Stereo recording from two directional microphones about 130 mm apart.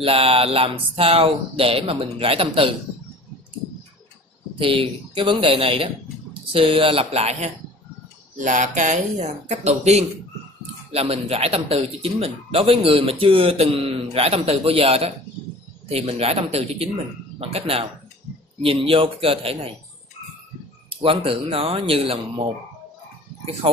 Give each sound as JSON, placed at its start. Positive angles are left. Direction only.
{"t": 0.0, "sound": "a man's voice", "side_deg": -45}
{"t": 4.6, "sound": "a man's voice", "side_deg": -40}
{"t": 8.4, "sound": "a man's voice", "side_deg": -70}
{"t": 20.9, "sound": "a man's voice", "side_deg": -45}